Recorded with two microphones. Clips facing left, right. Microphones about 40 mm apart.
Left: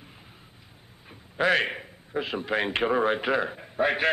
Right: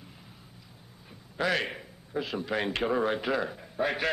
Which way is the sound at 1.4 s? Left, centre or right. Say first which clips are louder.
Left 5 dB; left.